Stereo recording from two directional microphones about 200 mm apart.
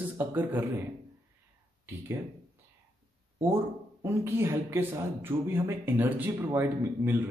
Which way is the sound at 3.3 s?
10° right (ahead or behind).